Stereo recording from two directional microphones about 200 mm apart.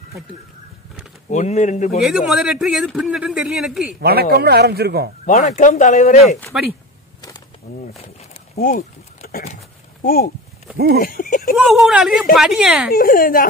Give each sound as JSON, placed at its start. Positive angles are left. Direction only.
{"t": 1.3, "sound": "speech", "side_deg": 35}
{"t": 1.9, "sound": "a man's voice", "side_deg": 0}
{"t": 4.0, "sound": "speech", "side_deg": -50}
{"t": 5.2, "sound": "speech", "side_deg": 40}
{"t": 6.5, "sound": "a man's voice", "side_deg": -5}
{"t": 7.2, "sound": "a sound", "side_deg": 20}
{"t": 8.5, "sound": "speech", "side_deg": 40}
{"t": 10.0, "sound": "a woman's voice", "side_deg": 45}
{"t": 11.5, "sound": "a man's voice", "side_deg": 0}
{"t": 12.9, "sound": "a woman's voice", "side_deg": 45}